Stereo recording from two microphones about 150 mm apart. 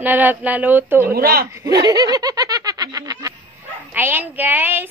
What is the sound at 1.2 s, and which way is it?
Speech, 80° right.